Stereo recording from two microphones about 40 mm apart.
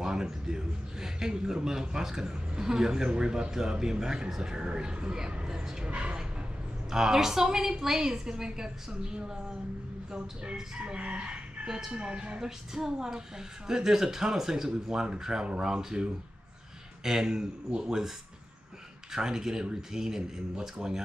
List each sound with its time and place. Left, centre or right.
0.0 s a man's voice: centre
5.9 s speech: right
6.9 s a man's voice: centre
11.0 s chicken: right
11.6 s speech: centre
11.9 s speech: right
12.4 s a man's voice: centre
19.1 s a man's voice: centre